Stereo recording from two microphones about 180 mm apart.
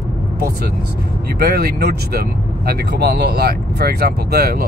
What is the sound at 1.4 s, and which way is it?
Speech, 60° right (ahead or behind).